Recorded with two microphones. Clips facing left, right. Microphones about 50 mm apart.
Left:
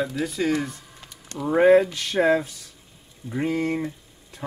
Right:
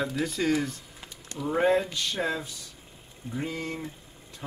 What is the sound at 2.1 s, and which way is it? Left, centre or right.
Speech, left.